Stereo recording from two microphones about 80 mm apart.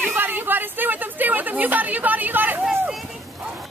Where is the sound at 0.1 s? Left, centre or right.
Right.